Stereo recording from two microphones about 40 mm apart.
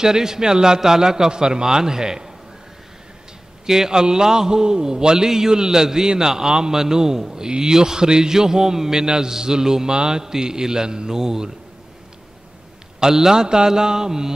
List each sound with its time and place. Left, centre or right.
0.0 s a man's voice: centre
3.6 s a man's voice: centre
13.0 s a man's voice: centre